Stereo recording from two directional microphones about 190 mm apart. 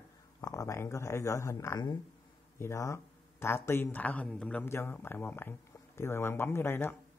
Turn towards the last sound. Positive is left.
turn(degrees=10)  # may be behind; listen again after turning